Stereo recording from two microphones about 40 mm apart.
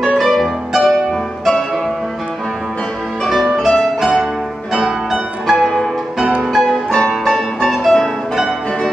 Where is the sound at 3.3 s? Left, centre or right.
Centre.